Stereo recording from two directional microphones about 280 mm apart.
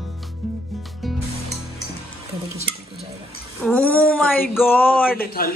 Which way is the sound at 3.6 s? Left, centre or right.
Centre.